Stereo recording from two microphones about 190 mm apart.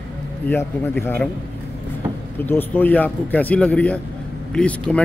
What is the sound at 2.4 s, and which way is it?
Speech, 10° left (ahead or behind).